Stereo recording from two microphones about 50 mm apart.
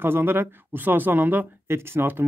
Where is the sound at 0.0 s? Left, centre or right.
Right.